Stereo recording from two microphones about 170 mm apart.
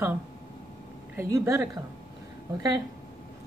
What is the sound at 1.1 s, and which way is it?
Speech, 15° right (ahead or behind).